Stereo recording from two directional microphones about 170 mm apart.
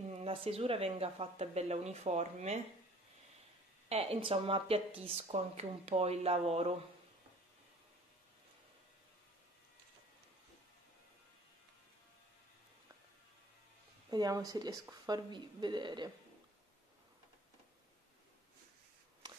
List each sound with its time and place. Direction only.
0.2 s speech: 35° right (ahead or behind)
3.9 s speech: 35° right (ahead or behind)
14.1 s speech: 20° right (ahead or behind)